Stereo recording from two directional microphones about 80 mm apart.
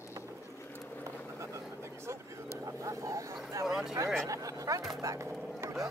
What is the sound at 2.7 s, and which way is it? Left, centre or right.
Vehicle, right.